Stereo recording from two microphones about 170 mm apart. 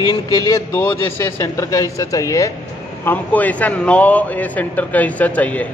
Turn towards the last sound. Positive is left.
turn(degrees=10)  # may be behind; listen again after turning